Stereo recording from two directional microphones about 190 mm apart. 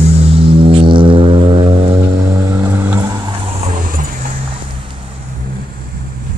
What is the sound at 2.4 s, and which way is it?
Vehicle, 15° right (ahead or behind).